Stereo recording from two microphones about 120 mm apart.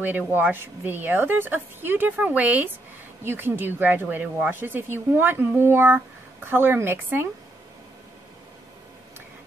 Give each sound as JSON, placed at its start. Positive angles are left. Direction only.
{"t": 0.0, "sound": "a woman's voice", "side_deg": -15}